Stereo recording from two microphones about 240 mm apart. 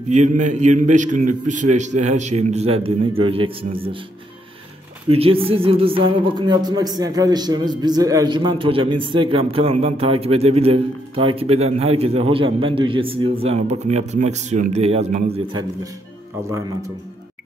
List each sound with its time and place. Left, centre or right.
0.1 s speech: right
5.1 s a man's voice: right